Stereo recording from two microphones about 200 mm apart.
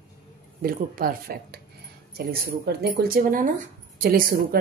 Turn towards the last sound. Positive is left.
turn(degrees=-45)  # may be behind; listen again after turning